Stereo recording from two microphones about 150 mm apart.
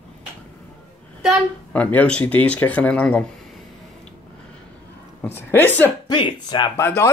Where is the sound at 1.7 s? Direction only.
10° left (ahead or behind).